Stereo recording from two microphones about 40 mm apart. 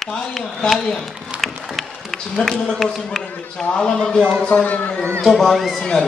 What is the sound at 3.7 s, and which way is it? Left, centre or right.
Speech, centre.